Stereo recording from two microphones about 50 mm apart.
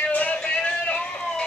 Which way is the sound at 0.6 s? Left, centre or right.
Left.